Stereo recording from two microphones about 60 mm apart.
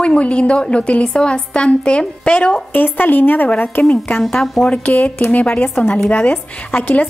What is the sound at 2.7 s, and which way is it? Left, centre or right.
A woman's voice, left.